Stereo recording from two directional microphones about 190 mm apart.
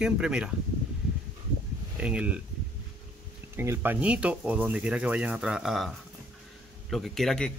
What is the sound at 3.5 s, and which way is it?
A man's voice, 15° right (ahead or behind).